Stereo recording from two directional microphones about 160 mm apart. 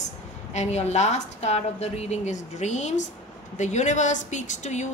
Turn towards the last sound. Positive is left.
turn(degrees=45)  # may be behind; listen again after turning